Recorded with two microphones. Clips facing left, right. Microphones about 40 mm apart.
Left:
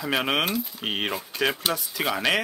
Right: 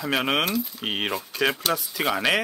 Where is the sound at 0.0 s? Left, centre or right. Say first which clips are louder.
Right 1 dB; centre.